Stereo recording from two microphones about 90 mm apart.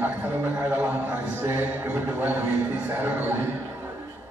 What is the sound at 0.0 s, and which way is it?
A man's voice, 20° right (ahead or behind).